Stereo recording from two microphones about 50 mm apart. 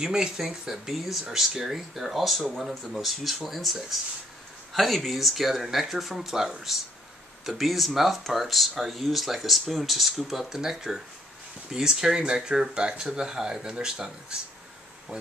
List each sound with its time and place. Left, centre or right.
0.0 s speech: centre